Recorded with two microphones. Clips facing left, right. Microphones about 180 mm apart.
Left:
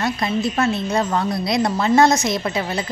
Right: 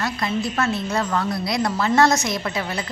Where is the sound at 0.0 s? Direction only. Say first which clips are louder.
Left 3 dB; 20° left (ahead or behind).